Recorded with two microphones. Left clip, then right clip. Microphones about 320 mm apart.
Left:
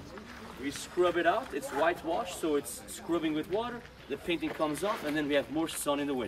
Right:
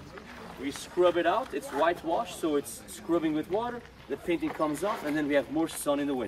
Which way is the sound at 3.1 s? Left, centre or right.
Centre.